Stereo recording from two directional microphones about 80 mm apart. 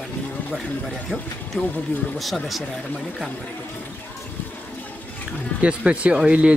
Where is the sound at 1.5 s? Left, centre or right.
Centre.